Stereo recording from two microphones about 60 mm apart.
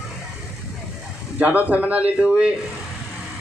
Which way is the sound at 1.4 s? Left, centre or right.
Right.